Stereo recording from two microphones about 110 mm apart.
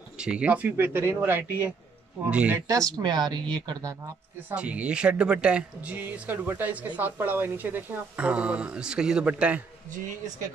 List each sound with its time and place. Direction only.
0.2 s speech: 10° right (ahead or behind)
2.7 s speech: 35° right (ahead or behind)
4.5 s speech: 10° right (ahead or behind)